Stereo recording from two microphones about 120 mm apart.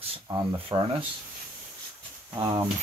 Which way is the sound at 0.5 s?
50° right (ahead or behind).